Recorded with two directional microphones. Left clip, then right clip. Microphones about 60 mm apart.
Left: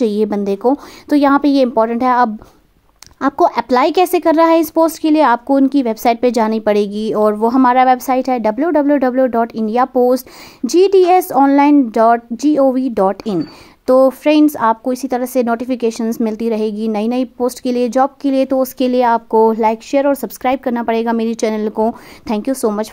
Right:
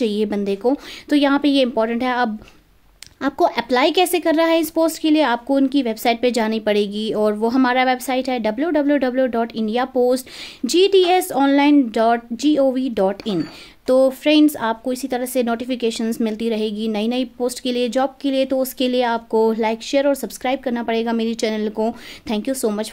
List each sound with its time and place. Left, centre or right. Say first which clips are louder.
0.0 s a woman's voice: left 5 dB; right
19.3 s a woman's voice: left 3 dB; right